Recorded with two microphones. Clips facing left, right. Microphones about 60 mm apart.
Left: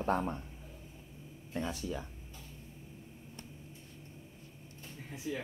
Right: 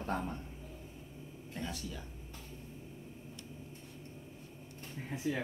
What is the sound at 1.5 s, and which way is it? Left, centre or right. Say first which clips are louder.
Speech: left 5 dB; left.